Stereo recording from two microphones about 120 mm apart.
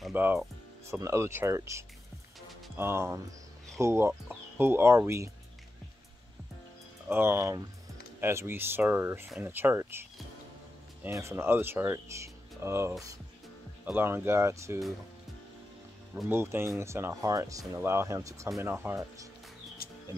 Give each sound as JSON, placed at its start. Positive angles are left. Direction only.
{"t": 0.1, "sound": "speech", "side_deg": -15}
{"t": 7.1, "sound": "speech", "side_deg": -20}
{"t": 11.1, "sound": "speech", "side_deg": -25}
{"t": 16.3, "sound": "speech", "side_deg": -20}